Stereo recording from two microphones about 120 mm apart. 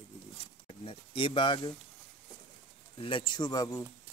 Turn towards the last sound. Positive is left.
turn(degrees=30)  # may be behind; listen again after turning